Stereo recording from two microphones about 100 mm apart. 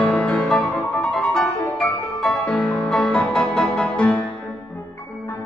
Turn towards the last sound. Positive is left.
turn(degrees=10)  # may be behind; listen again after turning